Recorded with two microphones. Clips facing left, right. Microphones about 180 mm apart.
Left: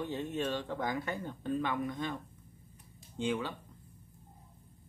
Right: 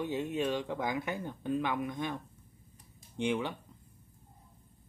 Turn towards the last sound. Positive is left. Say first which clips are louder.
# right 2 dB
turn(degrees=-20)  # may be behind; listen again after turning